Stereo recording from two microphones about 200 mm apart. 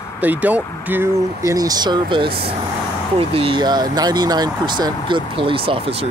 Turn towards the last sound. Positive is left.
turn(degrees=-25)  # may be behind; listen again after turning